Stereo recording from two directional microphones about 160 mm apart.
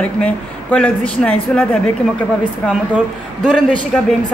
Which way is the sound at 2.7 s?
5° right (ahead or behind).